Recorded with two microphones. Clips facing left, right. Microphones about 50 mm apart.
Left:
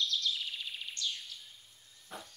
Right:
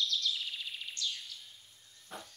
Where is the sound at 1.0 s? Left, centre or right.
Left.